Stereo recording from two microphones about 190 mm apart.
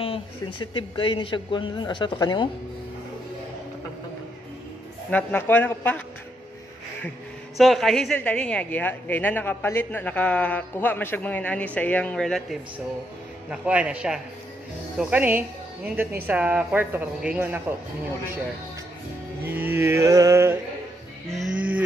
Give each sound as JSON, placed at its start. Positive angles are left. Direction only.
{"t": 0.0, "sound": "a man's voice", "side_deg": 30}
{"t": 5.1, "sound": "a woman's voice", "side_deg": 10}
{"t": 7.5, "sound": "a woman's voice", "side_deg": 0}
{"t": 19.5, "sound": "a woman's voice", "side_deg": -10}
{"t": 21.4, "sound": "music", "side_deg": -5}